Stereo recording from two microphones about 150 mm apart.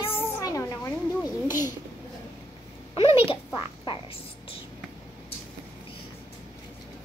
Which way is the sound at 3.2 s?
35° left (ahead or behind).